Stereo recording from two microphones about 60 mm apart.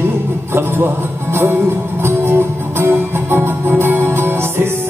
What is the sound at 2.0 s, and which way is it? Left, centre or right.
Music, right.